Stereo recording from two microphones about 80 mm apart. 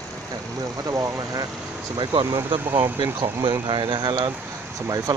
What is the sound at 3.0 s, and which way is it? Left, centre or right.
Speech, right.